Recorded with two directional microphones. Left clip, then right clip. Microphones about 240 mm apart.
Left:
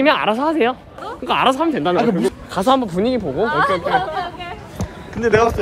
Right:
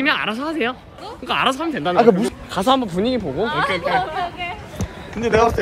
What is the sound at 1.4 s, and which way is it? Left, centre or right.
Speech, centre.